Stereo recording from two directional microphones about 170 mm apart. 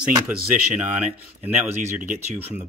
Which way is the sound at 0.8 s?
10° right (ahead or behind).